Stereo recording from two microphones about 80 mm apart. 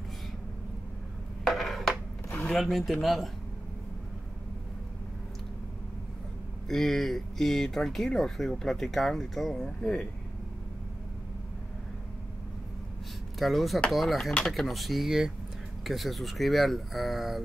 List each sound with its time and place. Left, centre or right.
1.4 s a sound: centre
2.6 s speech: centre
6.7 s speech: centre
13.4 s speech: centre